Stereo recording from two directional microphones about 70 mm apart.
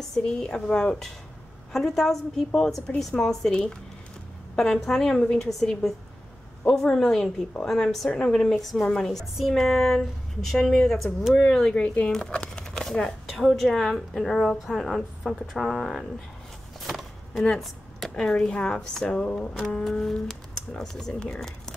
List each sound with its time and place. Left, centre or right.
0.1 s a woman's voice: centre
11.5 s a woman's voice: centre